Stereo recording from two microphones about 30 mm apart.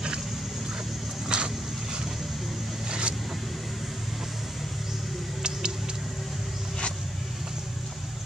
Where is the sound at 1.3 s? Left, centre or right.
Right.